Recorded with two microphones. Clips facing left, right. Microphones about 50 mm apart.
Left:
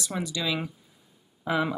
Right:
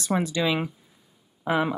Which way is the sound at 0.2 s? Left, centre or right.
Right.